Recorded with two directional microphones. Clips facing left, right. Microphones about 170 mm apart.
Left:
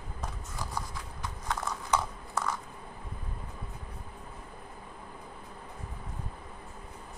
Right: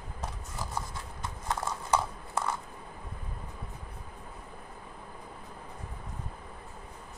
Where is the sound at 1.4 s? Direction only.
30° right (ahead or behind).